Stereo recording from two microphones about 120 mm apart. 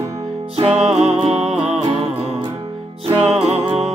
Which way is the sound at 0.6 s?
60° right (ahead or behind).